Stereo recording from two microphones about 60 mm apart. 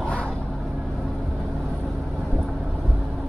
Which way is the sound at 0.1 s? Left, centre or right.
Centre.